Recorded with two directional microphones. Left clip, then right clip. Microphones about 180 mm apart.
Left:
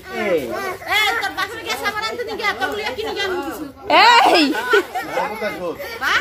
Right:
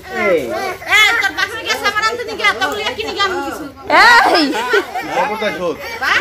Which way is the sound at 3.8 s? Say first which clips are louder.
Right 3 dB; 25° left (ahead or behind).